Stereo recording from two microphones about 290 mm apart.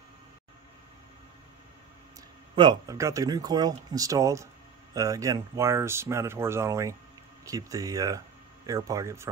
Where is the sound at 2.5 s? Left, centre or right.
Centre.